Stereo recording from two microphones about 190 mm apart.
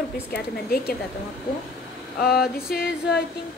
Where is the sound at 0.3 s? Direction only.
55° left (ahead or behind).